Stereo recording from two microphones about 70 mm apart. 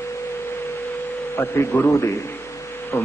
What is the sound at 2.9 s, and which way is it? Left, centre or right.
Speech, left.